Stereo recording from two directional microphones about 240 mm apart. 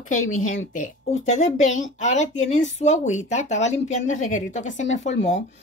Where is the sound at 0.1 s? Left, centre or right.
Left.